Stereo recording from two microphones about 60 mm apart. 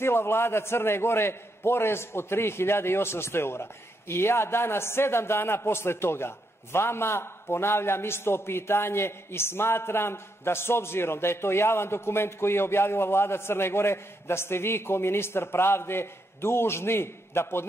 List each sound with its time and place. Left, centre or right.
0.0 s a man's voice: left